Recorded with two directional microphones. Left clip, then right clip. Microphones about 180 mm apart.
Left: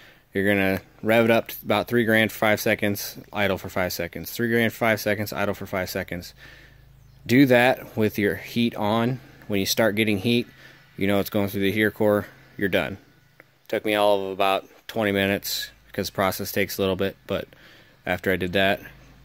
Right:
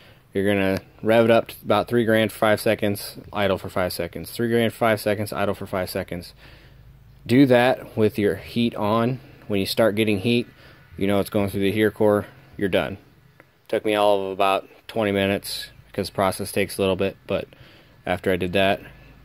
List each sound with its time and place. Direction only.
0.3 s speech: 20° left (ahead or behind)